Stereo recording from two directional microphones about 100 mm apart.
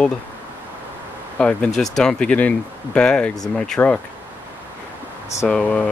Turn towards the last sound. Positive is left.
turn(degrees=10)  # may be behind; listen again after turning